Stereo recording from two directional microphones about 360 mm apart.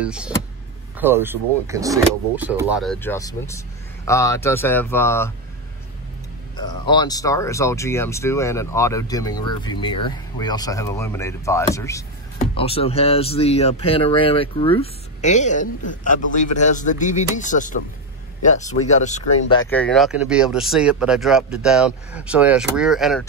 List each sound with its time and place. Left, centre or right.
0.0 s speech: centre
6.5 s speech: centre